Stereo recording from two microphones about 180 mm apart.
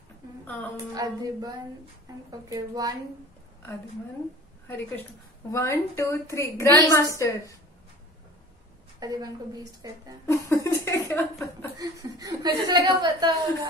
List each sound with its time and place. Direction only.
0.9 s a woman's voice: 20° right (ahead or behind)
4.6 s a woman's voice: 10° left (ahead or behind)
6.6 s a woman's voice: 20° right (ahead or behind)
6.9 s a woman's voice: 15° left (ahead or behind)
9.0 s a woman's voice: 20° right (ahead or behind)
10.5 s speech: 15° left (ahead or behind)
11.8 s a woman's voice: 20° right (ahead or behind)